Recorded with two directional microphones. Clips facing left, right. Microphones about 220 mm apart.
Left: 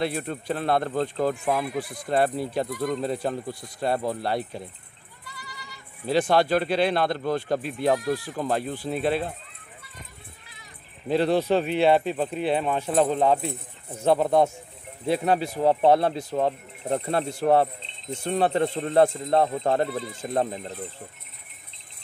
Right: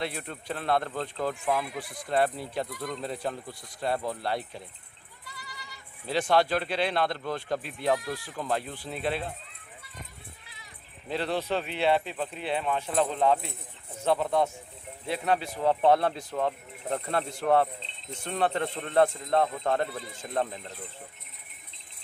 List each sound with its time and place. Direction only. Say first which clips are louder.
0.0 s speech: left 7 dB; 40° left (ahead or behind)
6.0 s speech: left 4 dB; 40° left (ahead or behind)
11.1 s speech: left 8 dB; 40° left (ahead or behind)